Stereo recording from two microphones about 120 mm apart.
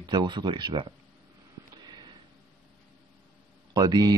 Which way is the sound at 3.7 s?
35° right (ahead or behind).